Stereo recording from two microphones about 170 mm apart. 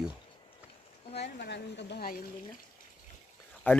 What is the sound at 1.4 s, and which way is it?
Speech, 85° left.